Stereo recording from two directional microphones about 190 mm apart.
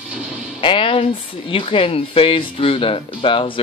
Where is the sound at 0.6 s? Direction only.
25° left (ahead or behind).